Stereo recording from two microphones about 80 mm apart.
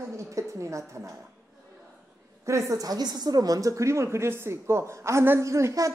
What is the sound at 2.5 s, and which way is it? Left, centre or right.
A woman's voice, right.